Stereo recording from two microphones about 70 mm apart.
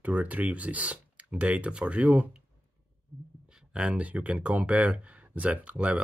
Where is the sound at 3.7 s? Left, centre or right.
Centre.